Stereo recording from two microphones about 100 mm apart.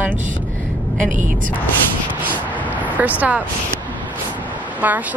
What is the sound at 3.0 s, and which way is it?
Speech, 15° right (ahead or behind).